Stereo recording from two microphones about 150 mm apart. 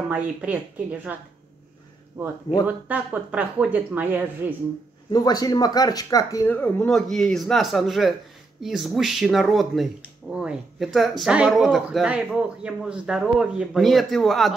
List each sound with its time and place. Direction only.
0.1 s speech: 10° right (ahead or behind)
2.2 s speech: 20° right (ahead or behind)
5.1 s speech: 25° left (ahead or behind)
6.5 s speech: 10° left (ahead or behind)